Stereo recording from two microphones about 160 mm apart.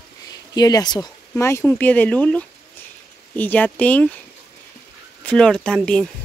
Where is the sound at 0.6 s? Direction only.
25° left (ahead or behind).